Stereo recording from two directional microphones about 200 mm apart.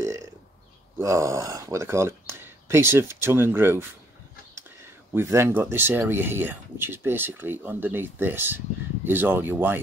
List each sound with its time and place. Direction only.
0.0 s burping: 15° right (ahead or behind)
0.9 s speech: 15° right (ahead or behind)
5.1 s speech: 15° right (ahead or behind)